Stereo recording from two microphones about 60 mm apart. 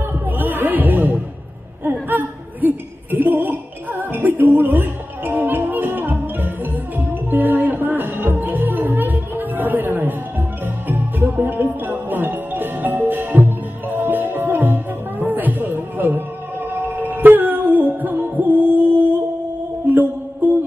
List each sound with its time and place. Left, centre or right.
0.4 s music: right
1.9 s a sound: right
10.9 s music: right